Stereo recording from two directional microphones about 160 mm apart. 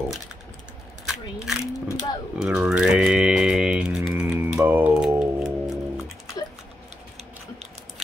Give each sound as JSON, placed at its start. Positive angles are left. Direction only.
{"t": 1.0, "sound": "single-lens reflex camera", "side_deg": -5}
{"t": 1.6, "sound": "a sound", "side_deg": 20}
{"t": 2.3, "sound": "typing", "side_deg": -5}